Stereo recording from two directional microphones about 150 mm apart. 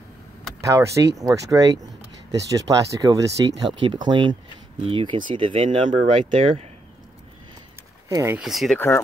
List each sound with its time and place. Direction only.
0.7 s speech: 20° right (ahead or behind); by 6.7 s 40° right (ahead or behind)
8.1 s speech: 20° right (ahead or behind)
8.4 s speech: centre (ahead or behind)
8.7 s speech: 15° left (ahead or behind)